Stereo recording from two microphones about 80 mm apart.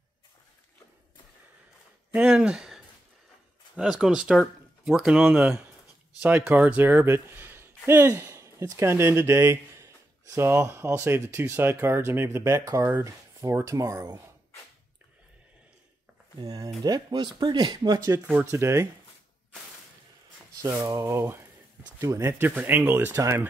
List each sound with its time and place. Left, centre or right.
2.1 s speech: centre; by 14.2 s right
16.3 s speech: right
18.2 s speech: right
18.6 s speech: right
22.0 s speech: right
22.4 s speech: right
23.1 s speech: right